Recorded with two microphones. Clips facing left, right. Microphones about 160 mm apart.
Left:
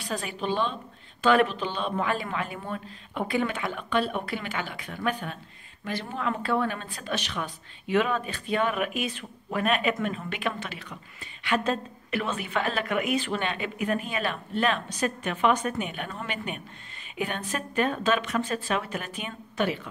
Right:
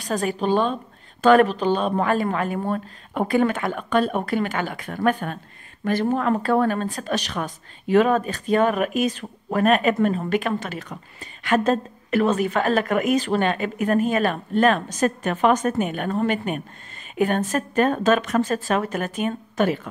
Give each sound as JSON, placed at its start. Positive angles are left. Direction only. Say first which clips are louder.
{"t": 0.0, "sound": "a woman's voice", "louder": "right 8 dB", "side_deg": -45}